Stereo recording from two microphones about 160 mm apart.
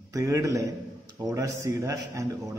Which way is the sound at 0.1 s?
20° right (ahead or behind).